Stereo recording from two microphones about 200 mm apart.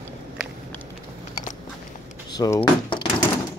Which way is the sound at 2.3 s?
20° left (ahead or behind).